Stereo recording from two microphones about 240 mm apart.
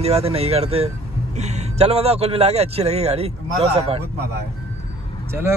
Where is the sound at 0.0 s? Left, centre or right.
Right.